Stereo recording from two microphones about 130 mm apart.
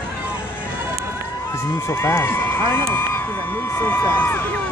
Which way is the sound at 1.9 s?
20° left (ahead or behind).